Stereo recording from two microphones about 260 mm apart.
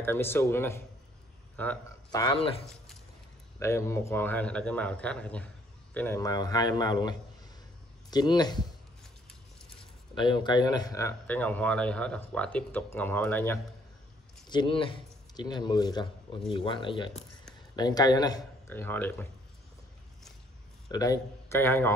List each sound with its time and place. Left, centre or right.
0.0 s speech: centre
3.5 s speech: centre
10.1 s speech: centre
14.5 s speech: centre
20.9 s speech: centre